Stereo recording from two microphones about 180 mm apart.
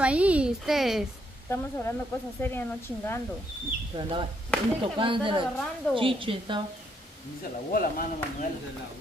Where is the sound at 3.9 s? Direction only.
25° right (ahead or behind).